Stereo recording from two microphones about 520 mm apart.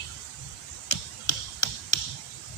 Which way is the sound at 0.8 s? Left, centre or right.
Left.